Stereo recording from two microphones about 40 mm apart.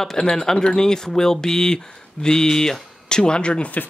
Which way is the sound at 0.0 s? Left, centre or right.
Centre.